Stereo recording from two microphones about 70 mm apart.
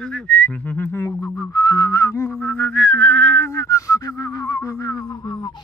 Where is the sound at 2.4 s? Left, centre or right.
Left.